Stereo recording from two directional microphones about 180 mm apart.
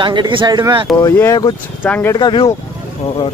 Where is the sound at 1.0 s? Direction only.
15° left (ahead or behind).